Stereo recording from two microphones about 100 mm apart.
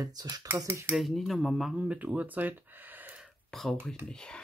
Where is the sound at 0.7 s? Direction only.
25° right (ahead or behind).